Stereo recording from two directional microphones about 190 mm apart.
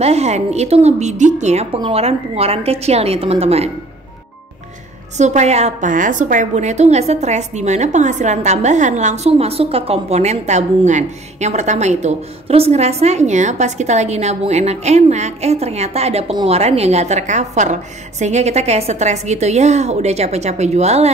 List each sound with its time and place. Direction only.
0.0 s a woman's voice: 35° right (ahead or behind)
5.1 s a woman's voice: 35° right (ahead or behind)